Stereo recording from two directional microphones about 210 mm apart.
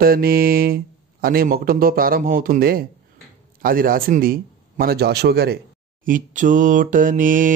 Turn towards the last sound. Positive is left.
turn(degrees=-40)  # may be behind; listen again after turning